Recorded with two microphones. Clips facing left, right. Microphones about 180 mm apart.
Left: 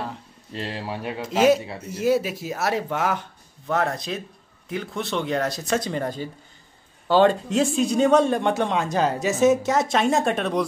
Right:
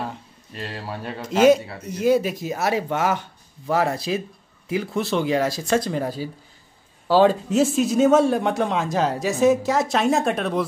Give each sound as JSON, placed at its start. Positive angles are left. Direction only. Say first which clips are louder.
{"t": 0.5, "sound": "speech", "louder": "left 2 dB", "side_deg": 25}
{"t": 1.2, "sound": "speech", "louder": "right 3 dB", "side_deg": 5}